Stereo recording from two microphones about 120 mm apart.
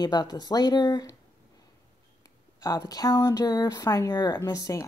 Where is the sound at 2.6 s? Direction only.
35° left (ahead or behind).